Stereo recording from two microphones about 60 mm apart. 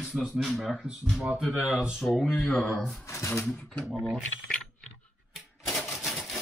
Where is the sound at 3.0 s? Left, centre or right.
Left.